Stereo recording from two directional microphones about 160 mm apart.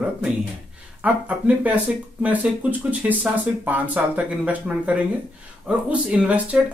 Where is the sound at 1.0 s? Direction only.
10° right (ahead or behind).